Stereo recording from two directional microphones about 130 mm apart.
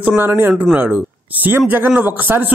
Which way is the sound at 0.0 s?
15° right (ahead or behind).